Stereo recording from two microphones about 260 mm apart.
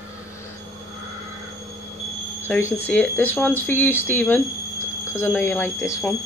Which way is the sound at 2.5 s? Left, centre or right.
Centre.